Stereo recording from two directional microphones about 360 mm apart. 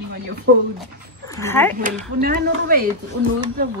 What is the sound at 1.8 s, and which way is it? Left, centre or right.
Speech, right.